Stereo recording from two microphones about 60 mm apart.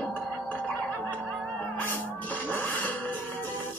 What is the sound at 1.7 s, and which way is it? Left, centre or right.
Music, left.